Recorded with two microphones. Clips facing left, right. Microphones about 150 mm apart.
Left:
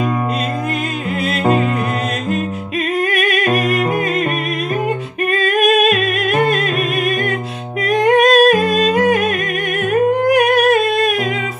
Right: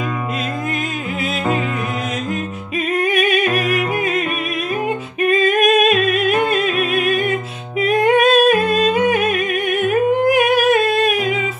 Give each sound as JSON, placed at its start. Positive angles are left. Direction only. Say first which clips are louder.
{"t": 3.0, "sound": "music", "louder": "right 2 dB", "side_deg": 0}
{"t": 5.2, "sound": "music", "louder": "right 1 dB", "side_deg": 0}
{"t": 7.8, "sound": "humming", "louder": "left 1 dB", "side_deg": 0}